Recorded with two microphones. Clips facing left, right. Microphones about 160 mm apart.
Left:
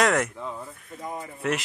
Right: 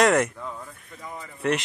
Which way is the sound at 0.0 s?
Centre (ahead or behind).